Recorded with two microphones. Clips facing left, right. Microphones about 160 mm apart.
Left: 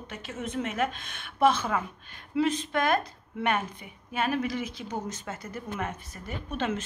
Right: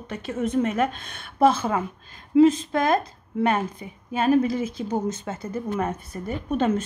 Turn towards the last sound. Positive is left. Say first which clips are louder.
# right 8 dB
turn(degrees=-40)  # may be behind; listen again after turning